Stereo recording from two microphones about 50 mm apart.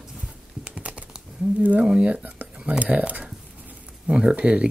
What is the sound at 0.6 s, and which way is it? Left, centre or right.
Computer keyboard, right.